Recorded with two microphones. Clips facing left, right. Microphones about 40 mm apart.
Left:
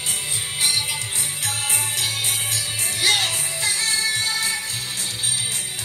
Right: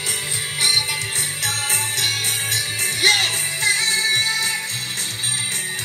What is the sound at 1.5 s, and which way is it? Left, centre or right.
Jingle bell, right.